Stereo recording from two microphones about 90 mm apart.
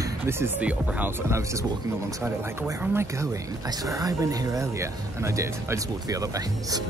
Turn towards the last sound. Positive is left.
turn(degrees=-40)  # may be behind; listen again after turning